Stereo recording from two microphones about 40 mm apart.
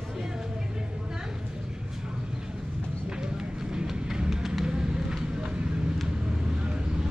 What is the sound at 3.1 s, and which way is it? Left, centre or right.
Run, centre.